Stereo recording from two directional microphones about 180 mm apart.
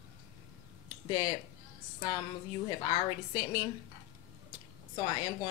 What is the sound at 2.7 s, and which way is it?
Speech, 25° left (ahead or behind).